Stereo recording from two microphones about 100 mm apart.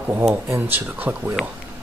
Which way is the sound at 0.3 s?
20° right (ahead or behind).